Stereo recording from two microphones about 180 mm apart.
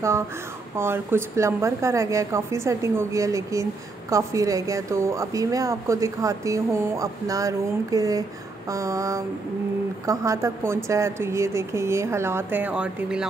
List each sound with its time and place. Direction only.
0.7 s a woman's voice: 15° right (ahead or behind)